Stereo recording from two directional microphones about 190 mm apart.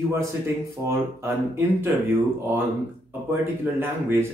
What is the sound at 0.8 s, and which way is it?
Speech, 15° right (ahead or behind).